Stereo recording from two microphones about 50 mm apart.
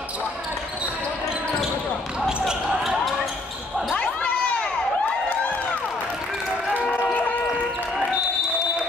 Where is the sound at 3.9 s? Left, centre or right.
Left.